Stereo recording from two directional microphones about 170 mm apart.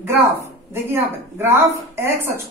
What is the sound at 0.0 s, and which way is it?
A man's voice, 15° right (ahead or behind).